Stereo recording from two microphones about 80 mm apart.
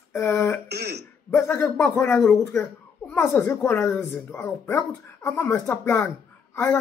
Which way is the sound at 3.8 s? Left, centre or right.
Left.